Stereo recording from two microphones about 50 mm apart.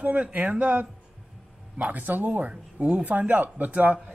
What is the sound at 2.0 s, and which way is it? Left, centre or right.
Speech, right.